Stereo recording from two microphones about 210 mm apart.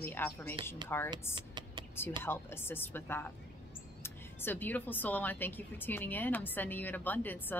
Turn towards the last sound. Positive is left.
turn(degrees=10)  # may be behind; listen again after turning